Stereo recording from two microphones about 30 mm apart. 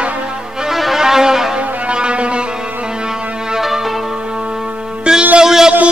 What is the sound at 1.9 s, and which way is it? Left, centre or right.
Music, right.